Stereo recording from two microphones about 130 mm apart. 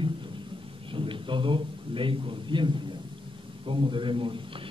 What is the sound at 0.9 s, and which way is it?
A man's voice, 40° right (ahead or behind).